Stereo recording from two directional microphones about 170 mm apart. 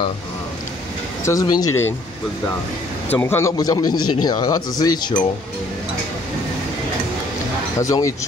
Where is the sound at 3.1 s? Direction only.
10° left (ahead or behind).